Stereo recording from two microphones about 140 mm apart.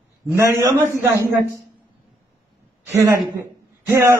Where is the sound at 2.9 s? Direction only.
20° right (ahead or behind).